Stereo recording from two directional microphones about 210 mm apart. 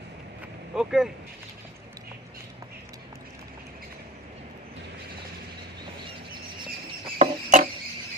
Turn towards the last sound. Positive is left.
turn(degrees=-35)  # may be behind; listen again after turning